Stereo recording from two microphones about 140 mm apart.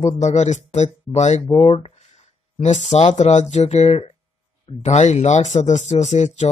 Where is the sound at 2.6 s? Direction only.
55° left (ahead or behind).